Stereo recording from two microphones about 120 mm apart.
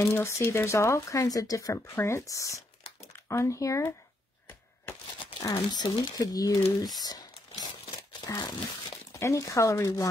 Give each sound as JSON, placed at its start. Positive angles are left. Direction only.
{"t": 0.0, "sound": "speech", "side_deg": 20}
{"t": 5.4, "sound": "speech", "side_deg": 30}
{"t": 8.3, "sound": "speech", "side_deg": 30}